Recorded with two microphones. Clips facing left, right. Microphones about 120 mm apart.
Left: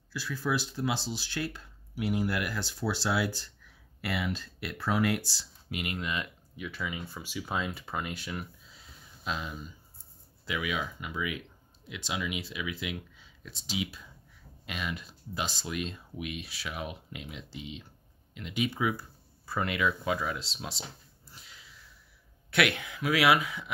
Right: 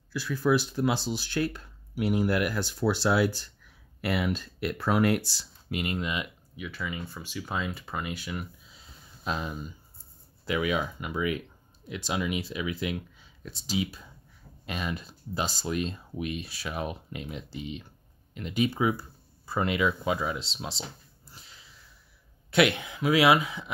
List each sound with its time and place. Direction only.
0.1 s speech: 55° right (ahead or behind)
5.4 s speech: 40° right (ahead or behind)
5.9 s speech: 20° right (ahead or behind)
6.5 s speech: centre (ahead or behind)
9.2 s speech: 45° right (ahead or behind); by 20.8 s 25° right (ahead or behind)
22.5 s speech: 25° right (ahead or behind)